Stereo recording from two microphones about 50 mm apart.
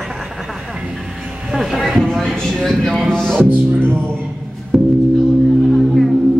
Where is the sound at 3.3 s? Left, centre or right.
Right.